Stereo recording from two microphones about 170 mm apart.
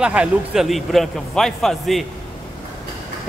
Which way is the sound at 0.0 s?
5° right (ahead or behind).